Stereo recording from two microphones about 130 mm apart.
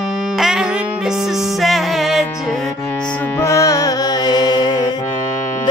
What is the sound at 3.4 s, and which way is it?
Music, 25° left (ahead or behind).